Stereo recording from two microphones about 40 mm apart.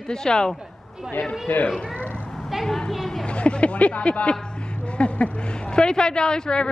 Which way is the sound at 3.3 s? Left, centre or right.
Left.